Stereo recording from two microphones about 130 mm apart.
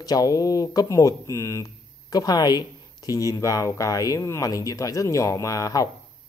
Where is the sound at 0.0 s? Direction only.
30° left (ahead or behind).